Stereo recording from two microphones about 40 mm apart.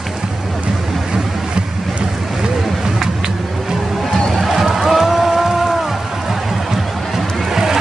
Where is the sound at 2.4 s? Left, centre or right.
Centre.